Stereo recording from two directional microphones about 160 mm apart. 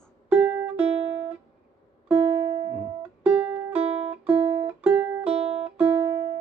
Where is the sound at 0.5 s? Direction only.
15° right (ahead or behind).